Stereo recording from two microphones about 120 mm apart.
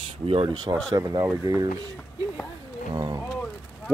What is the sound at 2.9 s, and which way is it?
Speech, 35° right (ahead or behind).